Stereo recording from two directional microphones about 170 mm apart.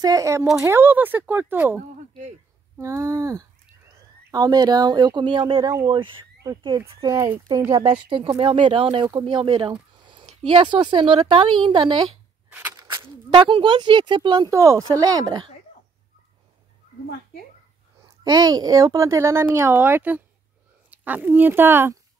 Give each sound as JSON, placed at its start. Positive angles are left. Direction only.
{"t": 0.0, "sound": "speech", "side_deg": -20}
{"t": 2.8, "sound": "speech", "side_deg": -15}
{"t": 8.1, "sound": "speech", "side_deg": -30}
{"t": 12.4, "sound": "a sound", "side_deg": -10}
{"t": 13.3, "sound": "speech", "side_deg": -30}
{"t": 18.0, "sound": "speech", "side_deg": -25}